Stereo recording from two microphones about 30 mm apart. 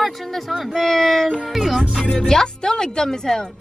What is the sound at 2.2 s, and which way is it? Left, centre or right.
Speech, left.